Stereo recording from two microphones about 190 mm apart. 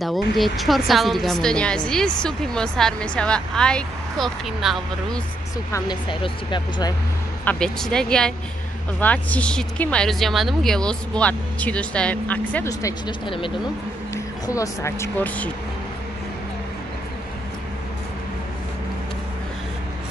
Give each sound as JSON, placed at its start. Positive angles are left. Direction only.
{"t": 0.0, "sound": "a woman's voice", "side_deg": 0}
{"t": 5.7, "sound": "speech", "side_deg": 20}
{"t": 7.4, "sound": "a woman's voice", "side_deg": 5}
{"t": 14.1, "sound": "speech", "side_deg": 15}